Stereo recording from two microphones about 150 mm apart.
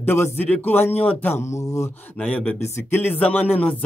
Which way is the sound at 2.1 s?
10° left (ahead or behind).